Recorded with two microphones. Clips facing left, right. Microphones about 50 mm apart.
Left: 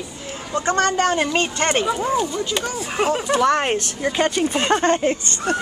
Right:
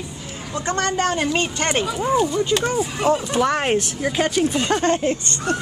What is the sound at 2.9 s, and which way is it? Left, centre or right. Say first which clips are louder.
Speech: left 1 dB; left.